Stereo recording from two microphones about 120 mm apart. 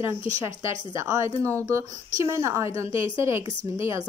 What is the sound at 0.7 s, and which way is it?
Speech, 25° right (ahead or behind).